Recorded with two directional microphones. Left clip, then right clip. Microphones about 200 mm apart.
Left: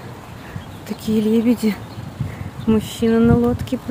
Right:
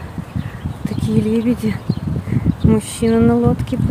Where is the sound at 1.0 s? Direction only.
5° left (ahead or behind).